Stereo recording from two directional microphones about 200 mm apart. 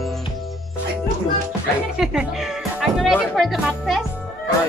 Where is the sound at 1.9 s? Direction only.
Centre (ahead or behind).